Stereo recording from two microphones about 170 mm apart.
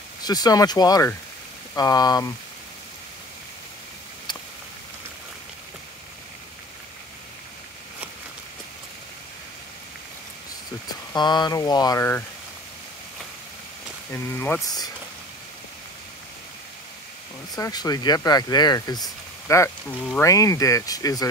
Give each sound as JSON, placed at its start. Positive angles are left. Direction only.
{"t": 0.2, "sound": "speech", "side_deg": 25}
{"t": 11.1, "sound": "speech", "side_deg": 25}
{"t": 14.1, "sound": "speech", "side_deg": 10}
{"t": 17.6, "sound": "speech", "side_deg": 20}